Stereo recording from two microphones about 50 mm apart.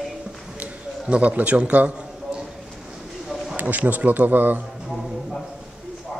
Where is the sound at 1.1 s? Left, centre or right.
Right.